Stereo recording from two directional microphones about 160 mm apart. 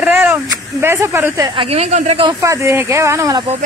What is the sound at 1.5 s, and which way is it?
Speech, 40° right (ahead or behind).